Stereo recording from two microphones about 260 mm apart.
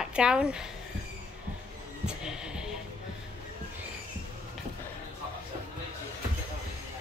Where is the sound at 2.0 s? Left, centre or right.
Centre.